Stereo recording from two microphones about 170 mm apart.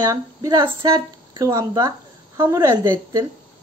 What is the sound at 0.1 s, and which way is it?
A woman's voice, 20° right (ahead or behind).